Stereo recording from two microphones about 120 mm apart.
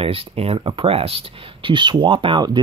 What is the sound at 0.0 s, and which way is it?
Speech, 55° right (ahead or behind).